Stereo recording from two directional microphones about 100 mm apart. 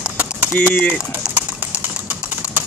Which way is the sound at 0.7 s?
5° left (ahead or behind).